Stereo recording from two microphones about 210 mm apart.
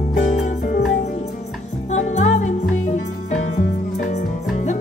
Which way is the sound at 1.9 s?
35° left (ahead or behind).